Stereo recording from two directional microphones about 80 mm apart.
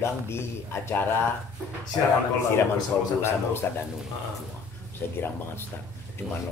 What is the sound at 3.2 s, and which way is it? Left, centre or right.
Speech, left.